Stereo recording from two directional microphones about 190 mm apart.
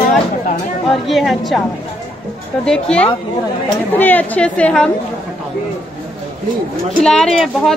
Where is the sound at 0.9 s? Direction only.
Centre (ahead or behind).